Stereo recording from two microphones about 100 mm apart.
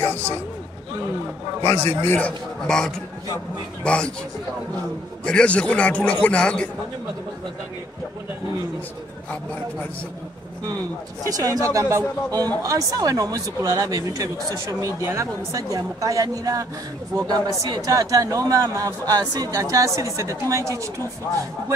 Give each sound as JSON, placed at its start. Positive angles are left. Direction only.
{"t": 0.0, "sound": "a sound", "side_deg": 20}
{"t": 1.6, "sound": "a man's voice", "side_deg": 25}
{"t": 2.6, "sound": "a man's voice", "side_deg": 5}
{"t": 5.2, "sound": "a man's voice", "side_deg": 10}
{"t": 11.2, "sound": "speech", "side_deg": -35}
{"t": 17.6, "sound": "speech", "side_deg": -40}